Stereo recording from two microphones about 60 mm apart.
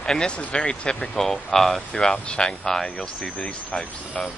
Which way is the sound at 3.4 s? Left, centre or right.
Left.